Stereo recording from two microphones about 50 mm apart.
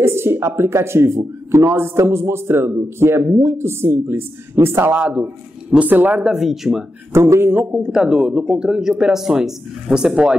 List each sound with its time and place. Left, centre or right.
0.0 s speech: right
2.0 s speech: right
5.8 s speech: right
6.3 s speech: centre
7.1 s speech: right
7.8 s speech: centre